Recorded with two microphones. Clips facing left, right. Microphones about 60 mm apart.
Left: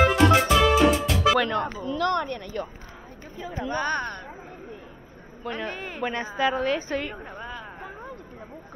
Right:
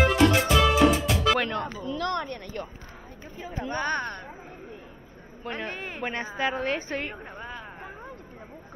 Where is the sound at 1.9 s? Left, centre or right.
Left.